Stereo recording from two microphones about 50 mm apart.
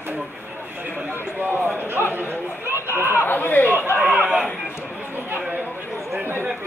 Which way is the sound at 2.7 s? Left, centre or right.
Right.